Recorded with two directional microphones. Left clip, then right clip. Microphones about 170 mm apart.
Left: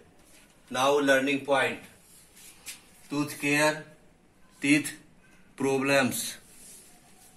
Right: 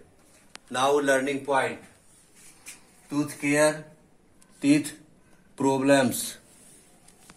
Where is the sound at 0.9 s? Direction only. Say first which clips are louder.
Left 1 dB; 20° right (ahead or behind).